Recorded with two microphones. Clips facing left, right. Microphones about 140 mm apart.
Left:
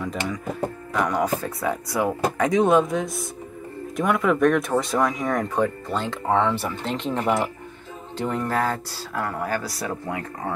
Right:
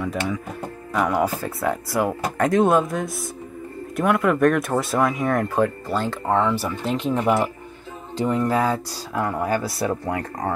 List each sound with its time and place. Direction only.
0.0 s speech: 5° right (ahead or behind); by 10.5 s 35° right (ahead or behind)